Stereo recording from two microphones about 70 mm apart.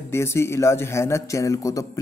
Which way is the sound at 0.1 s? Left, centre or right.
Left.